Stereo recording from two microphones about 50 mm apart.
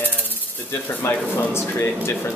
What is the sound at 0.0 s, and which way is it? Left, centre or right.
Snake, left.